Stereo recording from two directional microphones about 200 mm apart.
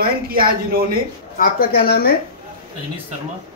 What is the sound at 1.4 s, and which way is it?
Speech, 50° left (ahead or behind).